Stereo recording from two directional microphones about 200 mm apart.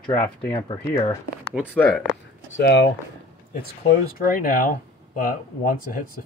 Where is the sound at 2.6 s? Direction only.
60° left (ahead or behind).